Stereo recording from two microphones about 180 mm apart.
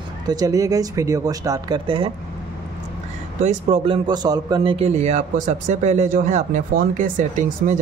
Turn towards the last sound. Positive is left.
turn(degrees=-45)  # may be behind; listen again after turning